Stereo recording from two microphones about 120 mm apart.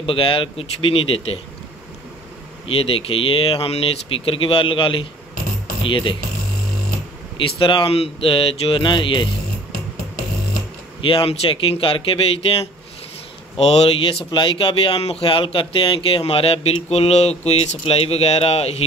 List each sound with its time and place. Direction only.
0.0 s speech: 45° left (ahead or behind)
2.6 s speech: 50° left (ahead or behind)
7.3 s speech: 45° left (ahead or behind)
11.0 s speech: 50° left (ahead or behind)